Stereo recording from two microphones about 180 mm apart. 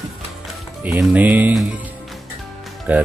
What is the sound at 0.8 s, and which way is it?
Speech, 10° right (ahead or behind).